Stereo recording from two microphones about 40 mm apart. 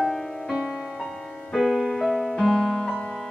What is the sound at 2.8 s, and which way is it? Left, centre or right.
Music, left.